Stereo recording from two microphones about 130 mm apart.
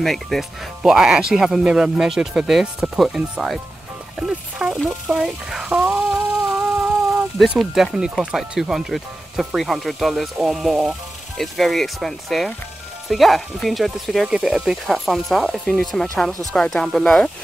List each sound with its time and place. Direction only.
0.0 s speech: centre (ahead or behind)